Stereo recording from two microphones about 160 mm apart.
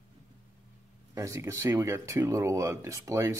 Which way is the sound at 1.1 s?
20° right (ahead or behind).